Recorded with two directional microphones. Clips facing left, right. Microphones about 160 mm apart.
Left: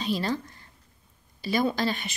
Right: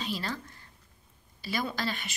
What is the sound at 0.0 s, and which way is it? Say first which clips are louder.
Speech: left 7 dB; 20° left (ahead or behind).